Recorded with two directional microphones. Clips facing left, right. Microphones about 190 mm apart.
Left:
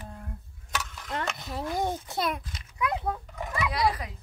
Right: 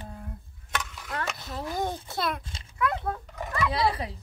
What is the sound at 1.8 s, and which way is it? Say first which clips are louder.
Speech: even; 15° left (ahead or behind).